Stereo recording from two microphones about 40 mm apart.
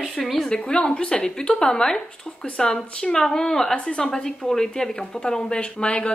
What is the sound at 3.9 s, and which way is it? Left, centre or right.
Speech, left.